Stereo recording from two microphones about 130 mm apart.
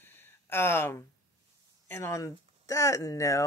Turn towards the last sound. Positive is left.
turn(degrees=25)  # may be behind; listen again after turning